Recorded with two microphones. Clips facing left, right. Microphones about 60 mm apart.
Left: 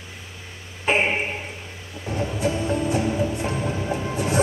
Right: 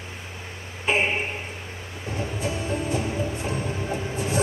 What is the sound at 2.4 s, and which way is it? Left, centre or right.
Music, left.